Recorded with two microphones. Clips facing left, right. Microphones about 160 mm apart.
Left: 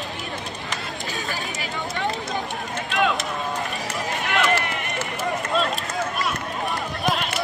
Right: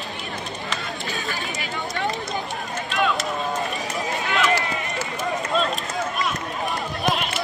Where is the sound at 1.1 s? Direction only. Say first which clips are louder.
Left 1 dB; 40° left (ahead or behind).